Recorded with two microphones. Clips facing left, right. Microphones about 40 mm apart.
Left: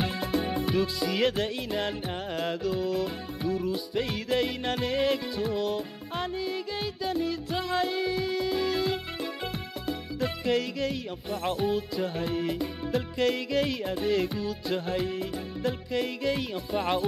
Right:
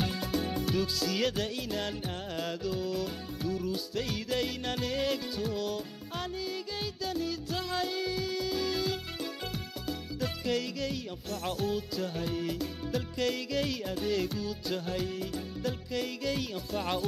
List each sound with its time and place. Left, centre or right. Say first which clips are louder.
0.0 s music: left 3 dB; centre